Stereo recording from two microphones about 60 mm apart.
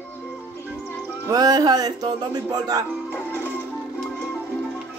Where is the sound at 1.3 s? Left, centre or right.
Right.